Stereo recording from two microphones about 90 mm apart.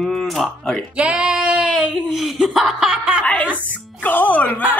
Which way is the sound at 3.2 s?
15° left (ahead or behind).